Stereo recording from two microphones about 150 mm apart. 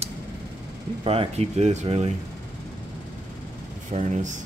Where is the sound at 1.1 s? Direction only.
45° right (ahead or behind).